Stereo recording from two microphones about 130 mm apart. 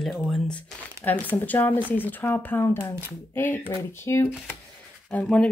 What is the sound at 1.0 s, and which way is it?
Speech, 20° left (ahead or behind).